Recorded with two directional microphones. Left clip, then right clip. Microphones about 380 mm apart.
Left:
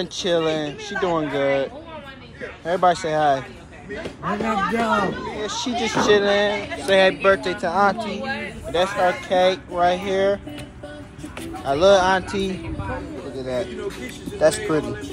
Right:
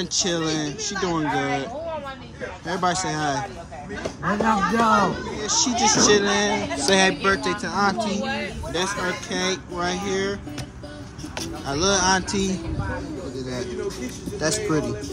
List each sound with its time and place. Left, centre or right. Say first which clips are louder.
0.0 s speech: left 3 dB; centre
4.5 s speech: right 2 dB; centre
8.0 s speech: right 1 dB; right
8.7 s speech: left 6 dB; centre
11.6 s speech: left 6 dB; centre
13.4 s a sound: left 7 dB; centre
14.4 s speech: left 6 dB; centre